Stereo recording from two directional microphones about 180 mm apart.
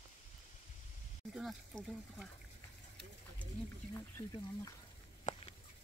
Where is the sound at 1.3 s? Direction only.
Centre (ahead or behind).